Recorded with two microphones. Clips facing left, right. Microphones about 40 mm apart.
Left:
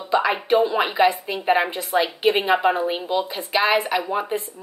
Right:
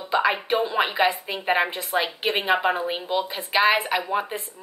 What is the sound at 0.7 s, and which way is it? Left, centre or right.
A woman's voice, centre.